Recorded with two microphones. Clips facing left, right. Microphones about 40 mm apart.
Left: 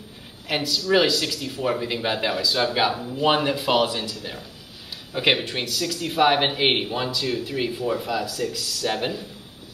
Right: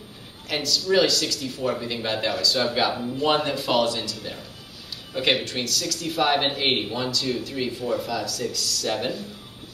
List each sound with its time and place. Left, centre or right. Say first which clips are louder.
0.5 s speech: left 1 dB; centre